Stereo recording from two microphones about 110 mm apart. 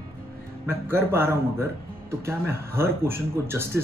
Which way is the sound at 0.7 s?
20° right (ahead or behind).